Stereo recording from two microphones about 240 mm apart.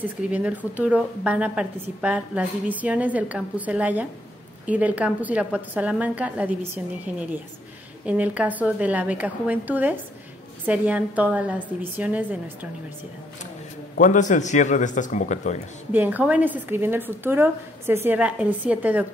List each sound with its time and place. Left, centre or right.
0.0 s a woman's voice: centre
13.9 s speech: left
15.9 s speech: centre